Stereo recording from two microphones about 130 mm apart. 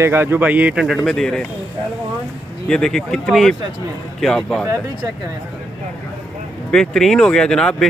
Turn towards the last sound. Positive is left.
turn(degrees=5)  # may be behind; listen again after turning